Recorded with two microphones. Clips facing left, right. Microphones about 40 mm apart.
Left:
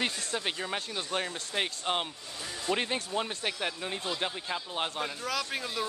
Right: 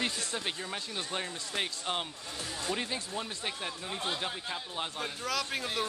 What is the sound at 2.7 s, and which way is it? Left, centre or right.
Speech, left.